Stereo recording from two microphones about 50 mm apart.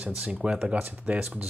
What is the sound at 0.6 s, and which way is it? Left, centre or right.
Speech, right.